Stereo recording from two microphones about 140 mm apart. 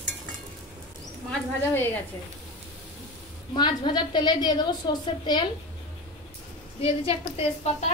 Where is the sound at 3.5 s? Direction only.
30° left (ahead or behind).